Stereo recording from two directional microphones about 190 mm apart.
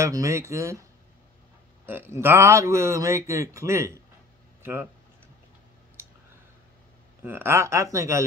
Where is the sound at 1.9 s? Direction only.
10° right (ahead or behind).